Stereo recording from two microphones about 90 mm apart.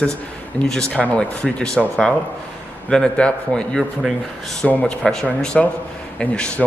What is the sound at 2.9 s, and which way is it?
A man's voice, 10° left (ahead or behind).